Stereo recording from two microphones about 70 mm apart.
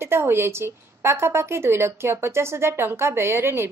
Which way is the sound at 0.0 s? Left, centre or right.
Right.